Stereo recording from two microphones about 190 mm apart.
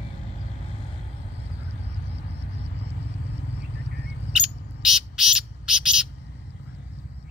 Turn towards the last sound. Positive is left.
turn(degrees=-5)  # may be behind; listen again after turning